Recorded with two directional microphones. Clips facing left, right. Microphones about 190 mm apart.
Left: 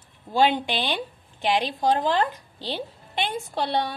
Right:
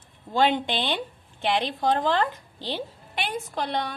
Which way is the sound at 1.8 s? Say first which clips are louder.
Even; 15° left (ahead or behind).